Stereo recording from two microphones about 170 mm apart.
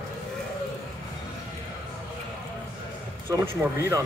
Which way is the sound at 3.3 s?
15° right (ahead or behind).